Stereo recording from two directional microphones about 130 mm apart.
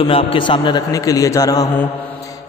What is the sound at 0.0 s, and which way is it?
A man's voice, 45° left (ahead or behind).